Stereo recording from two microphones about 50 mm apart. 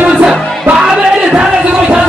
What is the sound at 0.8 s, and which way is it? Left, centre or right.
Music, centre.